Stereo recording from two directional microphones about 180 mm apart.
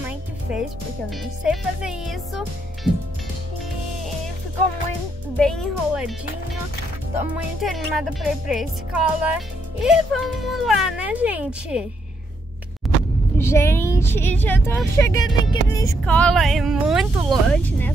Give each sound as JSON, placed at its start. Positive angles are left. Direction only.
{"t": 1.4, "sound": "speech", "side_deg": -5}
{"t": 5.4, "sound": "speech", "side_deg": 5}
{"t": 7.6, "sound": "speech", "side_deg": 0}
{"t": 13.4, "sound": "speech", "side_deg": 15}
{"t": 16.0, "sound": "speech", "side_deg": 5}